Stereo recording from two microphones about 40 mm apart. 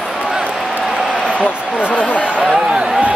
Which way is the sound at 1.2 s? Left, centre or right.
Left.